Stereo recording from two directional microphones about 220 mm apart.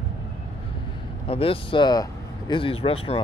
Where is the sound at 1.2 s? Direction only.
25° left (ahead or behind).